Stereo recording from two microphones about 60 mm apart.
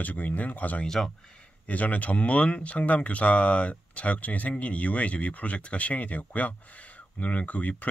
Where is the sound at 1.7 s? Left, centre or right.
Left.